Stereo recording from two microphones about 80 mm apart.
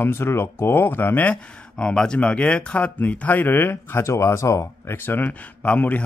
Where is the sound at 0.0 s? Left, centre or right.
Left.